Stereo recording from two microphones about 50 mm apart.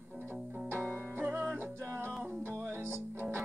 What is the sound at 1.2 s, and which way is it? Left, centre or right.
Music, right.